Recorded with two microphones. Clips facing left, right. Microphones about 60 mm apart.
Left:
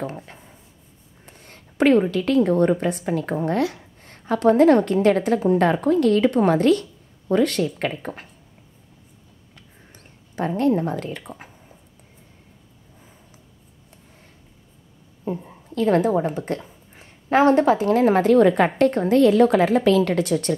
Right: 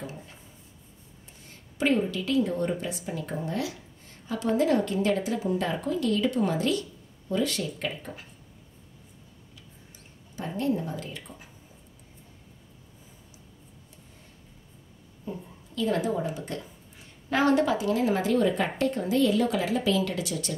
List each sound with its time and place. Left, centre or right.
0.0 s rub: left
1.2 s a woman's voice: left
9.9 s speech: left
15.4 s a woman's voice: left